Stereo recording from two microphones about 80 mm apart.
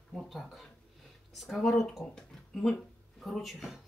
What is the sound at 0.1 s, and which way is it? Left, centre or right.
Speech, centre.